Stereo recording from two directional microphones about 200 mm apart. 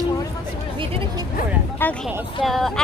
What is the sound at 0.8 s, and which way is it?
Speech, 25° right (ahead or behind).